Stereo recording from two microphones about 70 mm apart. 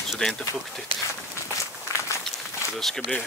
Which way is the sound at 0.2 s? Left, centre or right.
Centre.